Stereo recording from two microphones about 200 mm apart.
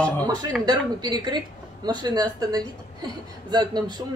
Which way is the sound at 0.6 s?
20° right (ahead or behind).